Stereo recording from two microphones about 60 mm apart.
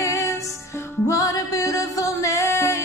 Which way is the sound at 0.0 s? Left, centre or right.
Left.